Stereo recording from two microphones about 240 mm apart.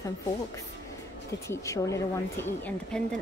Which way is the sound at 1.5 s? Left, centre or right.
Centre.